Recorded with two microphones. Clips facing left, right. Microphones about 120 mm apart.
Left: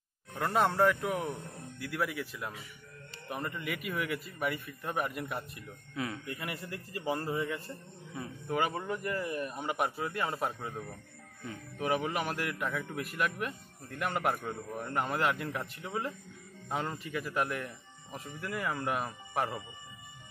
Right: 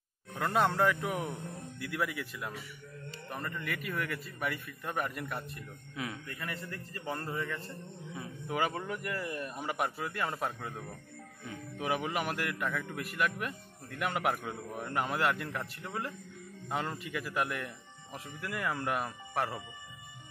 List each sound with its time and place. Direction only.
0.4 s a man's voice: 20° left (ahead or behind)
3.3 s a man's voice: 15° left (ahead or behind)
3.6 s a man's voice: 5° left (ahead or behind)
6.2 s a man's voice: 15° left (ahead or behind)
8.1 s a man's voice: centre (ahead or behind)